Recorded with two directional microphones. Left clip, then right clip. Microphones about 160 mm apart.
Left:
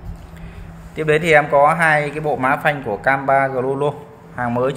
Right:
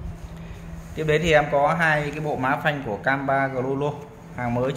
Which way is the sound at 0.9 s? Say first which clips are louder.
Left 5 dB; 15° left (ahead or behind).